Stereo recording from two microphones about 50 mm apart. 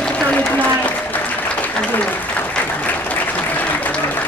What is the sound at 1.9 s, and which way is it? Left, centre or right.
Speech, left.